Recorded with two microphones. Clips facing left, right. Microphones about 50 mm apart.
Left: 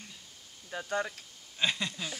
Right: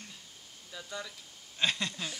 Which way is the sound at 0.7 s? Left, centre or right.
Left.